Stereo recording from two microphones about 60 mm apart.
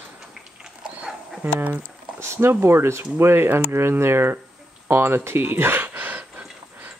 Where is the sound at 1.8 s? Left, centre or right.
Right.